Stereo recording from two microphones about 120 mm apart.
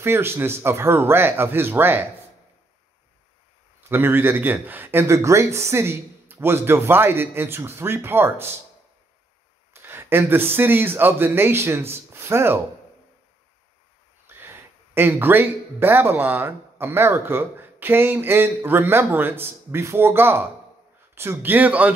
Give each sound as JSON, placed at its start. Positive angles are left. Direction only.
{"t": 0.0, "sound": "speech", "side_deg": -20}
{"t": 3.9, "sound": "speech", "side_deg": -15}
{"t": 9.8, "sound": "speech", "side_deg": -20}
{"t": 14.2, "sound": "speech", "side_deg": -20}